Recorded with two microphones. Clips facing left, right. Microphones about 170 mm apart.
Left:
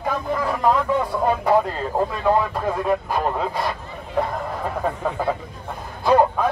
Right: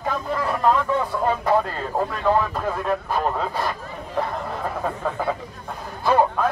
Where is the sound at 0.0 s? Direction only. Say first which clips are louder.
Left 1 dB; 10° left (ahead or behind).